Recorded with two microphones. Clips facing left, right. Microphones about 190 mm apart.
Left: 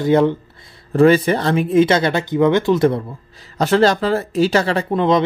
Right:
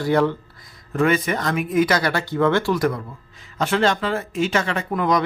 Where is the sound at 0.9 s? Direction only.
35° left (ahead or behind).